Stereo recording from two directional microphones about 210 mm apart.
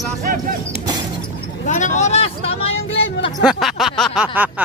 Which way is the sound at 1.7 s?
35° left (ahead or behind).